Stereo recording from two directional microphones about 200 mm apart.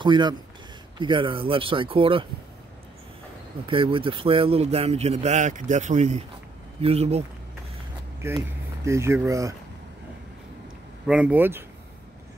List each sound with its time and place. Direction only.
0.0 s speech: 25° right (ahead or behind)
3.6 s a man's voice: 25° right (ahead or behind)
8.2 s speech: 15° right (ahead or behind)
11.1 s speech: 5° right (ahead or behind)